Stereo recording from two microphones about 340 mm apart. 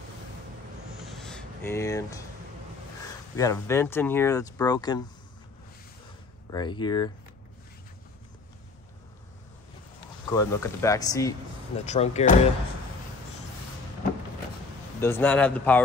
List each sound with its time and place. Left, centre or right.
1.0 s a sound: centre
3.3 s speech: centre
6.5 s speech: centre
10.3 s speech: centre
15.0 s speech: centre